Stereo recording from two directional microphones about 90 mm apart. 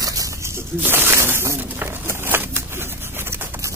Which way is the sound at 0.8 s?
25° right (ahead or behind).